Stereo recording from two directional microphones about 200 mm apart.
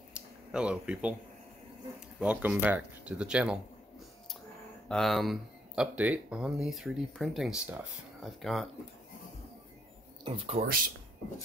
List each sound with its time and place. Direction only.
0.1 s a sound: 5° right (ahead or behind)
2.1 s speech: 5° right (ahead or behind)
4.8 s speech: centre (ahead or behind)
10.2 s speech: 25° right (ahead or behind)